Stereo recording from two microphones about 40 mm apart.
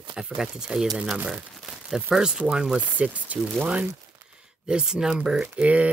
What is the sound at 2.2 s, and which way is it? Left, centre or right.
Speech, right.